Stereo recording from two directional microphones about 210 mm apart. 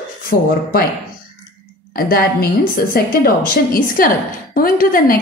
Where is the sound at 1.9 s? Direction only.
45° left (ahead or behind).